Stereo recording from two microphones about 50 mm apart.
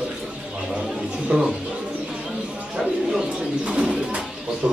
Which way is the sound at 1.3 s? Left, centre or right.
Centre.